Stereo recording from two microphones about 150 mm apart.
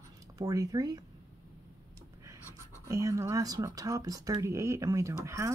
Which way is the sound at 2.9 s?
20° right (ahead or behind).